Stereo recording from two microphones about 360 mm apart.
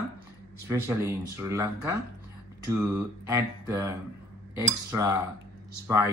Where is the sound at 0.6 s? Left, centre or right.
Centre.